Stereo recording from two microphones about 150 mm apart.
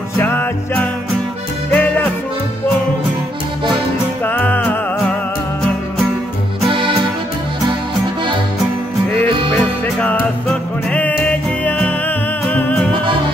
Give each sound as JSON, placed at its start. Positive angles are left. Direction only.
{"t": 0.2, "sound": "music", "side_deg": 15}
{"t": 4.2, "sound": "music", "side_deg": 10}
{"t": 6.7, "sound": "music", "side_deg": -35}
{"t": 9.9, "sound": "music", "side_deg": 10}